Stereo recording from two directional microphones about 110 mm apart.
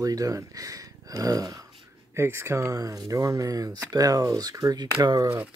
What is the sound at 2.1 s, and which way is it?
Speech, 20° right (ahead or behind).